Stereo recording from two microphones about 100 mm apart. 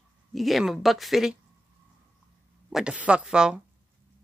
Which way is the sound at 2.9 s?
10° right (ahead or behind).